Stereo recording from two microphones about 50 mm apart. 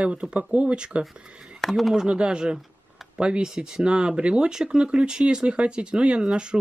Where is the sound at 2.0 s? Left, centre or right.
Centre.